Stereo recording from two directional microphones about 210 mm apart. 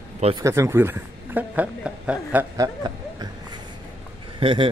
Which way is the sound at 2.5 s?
20° right (ahead or behind).